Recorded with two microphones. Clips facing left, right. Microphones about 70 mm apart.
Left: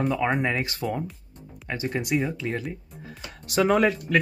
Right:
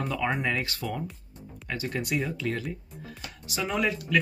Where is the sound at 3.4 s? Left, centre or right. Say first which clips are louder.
Left 8 dB; left.